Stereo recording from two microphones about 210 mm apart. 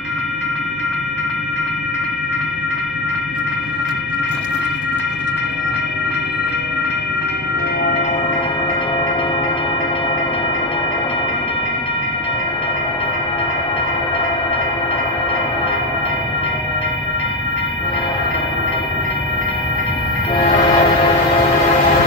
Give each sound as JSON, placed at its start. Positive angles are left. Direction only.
{"t": 20.3, "sound": "train", "side_deg": 25}